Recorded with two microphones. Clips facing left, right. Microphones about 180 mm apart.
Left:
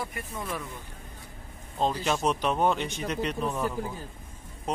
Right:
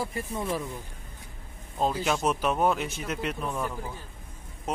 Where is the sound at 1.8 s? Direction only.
5° right (ahead or behind).